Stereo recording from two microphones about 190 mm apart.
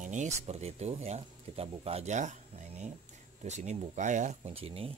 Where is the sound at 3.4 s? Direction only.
40° right (ahead or behind).